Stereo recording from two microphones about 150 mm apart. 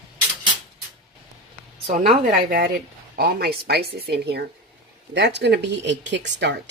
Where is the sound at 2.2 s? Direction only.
75° right (ahead or behind); by 4.4 s 90° right.